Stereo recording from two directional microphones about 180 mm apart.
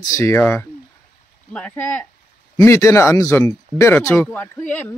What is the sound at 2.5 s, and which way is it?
Speech, 15° left (ahead or behind).